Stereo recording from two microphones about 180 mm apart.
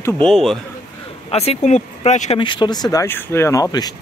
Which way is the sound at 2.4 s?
25° left (ahead or behind).